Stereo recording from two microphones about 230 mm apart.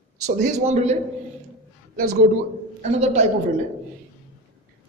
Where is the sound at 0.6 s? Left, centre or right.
Right.